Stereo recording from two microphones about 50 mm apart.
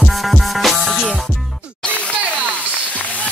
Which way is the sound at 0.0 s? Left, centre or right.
Centre.